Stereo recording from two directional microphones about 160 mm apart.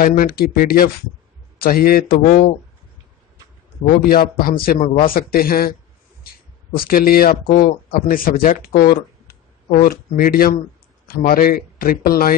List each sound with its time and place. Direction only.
0.0 s speech: 60° left (ahead or behind)
4.0 s a man's voice: 70° left (ahead or behind)